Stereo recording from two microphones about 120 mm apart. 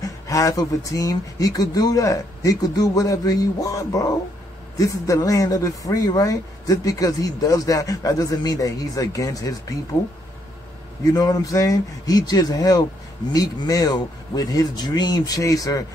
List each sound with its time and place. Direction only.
0.0 s speech: 30° left (ahead or behind)
11.1 s speech: 30° left (ahead or behind)